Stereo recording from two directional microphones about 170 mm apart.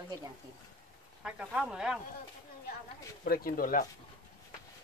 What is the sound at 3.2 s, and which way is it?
Speech, 60° left (ahead or behind).